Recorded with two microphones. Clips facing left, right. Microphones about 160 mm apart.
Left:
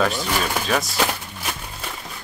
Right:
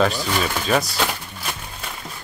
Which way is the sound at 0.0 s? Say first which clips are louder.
Right 2 dB; centre (ahead or behind).